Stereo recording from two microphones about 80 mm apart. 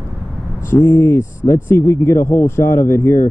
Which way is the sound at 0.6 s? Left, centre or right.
Left.